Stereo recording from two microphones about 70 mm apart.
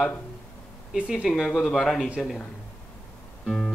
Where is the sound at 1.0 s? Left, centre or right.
Centre.